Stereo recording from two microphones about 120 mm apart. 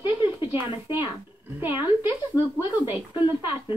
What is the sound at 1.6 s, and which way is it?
Speech, 15° right (ahead or behind).